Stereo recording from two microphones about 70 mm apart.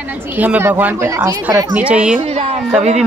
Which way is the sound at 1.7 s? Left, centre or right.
Centre.